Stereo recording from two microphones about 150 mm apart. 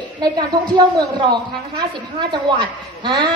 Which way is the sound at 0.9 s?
30° right (ahead or behind).